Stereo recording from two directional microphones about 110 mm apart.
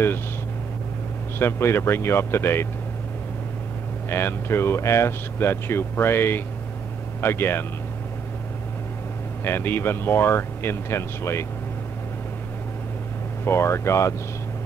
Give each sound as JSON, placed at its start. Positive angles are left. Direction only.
{"t": 1.4, "sound": "speech", "side_deg": 20}
{"t": 4.1, "sound": "speech", "side_deg": 20}
{"t": 9.4, "sound": "speech", "side_deg": 20}
{"t": 13.4, "sound": "speech", "side_deg": 25}